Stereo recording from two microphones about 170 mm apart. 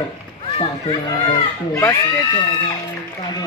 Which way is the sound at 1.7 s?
20° left (ahead or behind).